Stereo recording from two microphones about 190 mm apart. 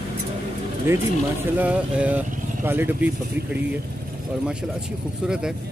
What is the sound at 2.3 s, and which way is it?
Vehicle, 45° right (ahead or behind).